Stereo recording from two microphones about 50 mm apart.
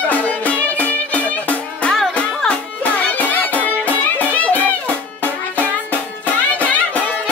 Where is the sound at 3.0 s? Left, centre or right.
Left.